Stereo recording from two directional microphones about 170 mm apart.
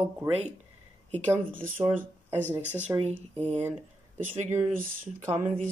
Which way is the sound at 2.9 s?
15° right (ahead or behind).